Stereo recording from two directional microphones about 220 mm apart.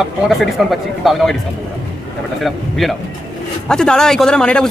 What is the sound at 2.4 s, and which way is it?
Speech, centre (ahead or behind).